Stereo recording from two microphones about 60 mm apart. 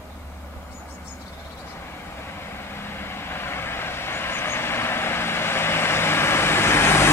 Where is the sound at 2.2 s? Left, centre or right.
Left.